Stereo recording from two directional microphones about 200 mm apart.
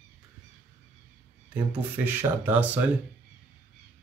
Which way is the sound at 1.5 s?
10° right (ahead or behind).